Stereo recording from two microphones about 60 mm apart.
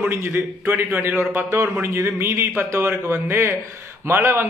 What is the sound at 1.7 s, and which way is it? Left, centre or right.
Speech, right.